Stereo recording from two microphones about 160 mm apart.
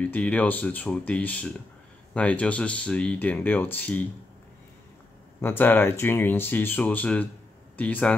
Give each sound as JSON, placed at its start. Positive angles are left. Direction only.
{"t": 0.0, "sound": "speech", "side_deg": 10}
{"t": 5.4, "sound": "speech", "side_deg": 10}